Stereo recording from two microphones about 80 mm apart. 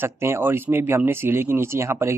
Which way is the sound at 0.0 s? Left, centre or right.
Right.